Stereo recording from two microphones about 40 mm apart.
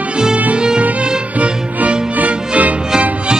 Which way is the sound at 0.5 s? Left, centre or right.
Right.